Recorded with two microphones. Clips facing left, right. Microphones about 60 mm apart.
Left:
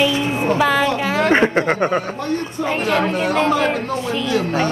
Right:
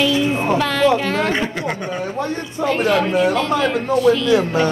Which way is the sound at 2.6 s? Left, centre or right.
Right.